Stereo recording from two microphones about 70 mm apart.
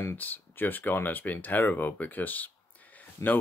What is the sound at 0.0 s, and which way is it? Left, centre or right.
Speech, left.